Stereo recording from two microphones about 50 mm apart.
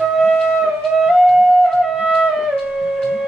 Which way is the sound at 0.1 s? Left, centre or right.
Centre.